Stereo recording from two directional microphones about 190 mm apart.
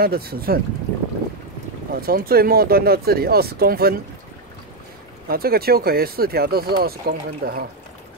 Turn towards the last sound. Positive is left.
turn(degrees=-55)  # may be behind; listen again after turning